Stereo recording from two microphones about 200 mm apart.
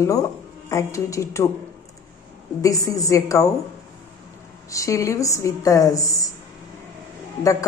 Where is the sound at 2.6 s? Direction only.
15° left (ahead or behind).